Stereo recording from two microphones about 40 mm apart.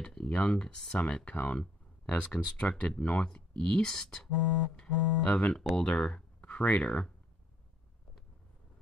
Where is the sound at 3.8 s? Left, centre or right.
Centre.